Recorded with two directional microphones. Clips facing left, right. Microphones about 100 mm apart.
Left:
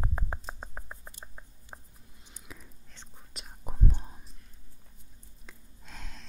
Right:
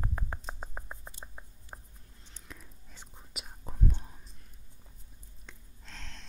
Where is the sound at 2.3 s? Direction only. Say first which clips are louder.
Left 1 dB; 5° left (ahead or behind).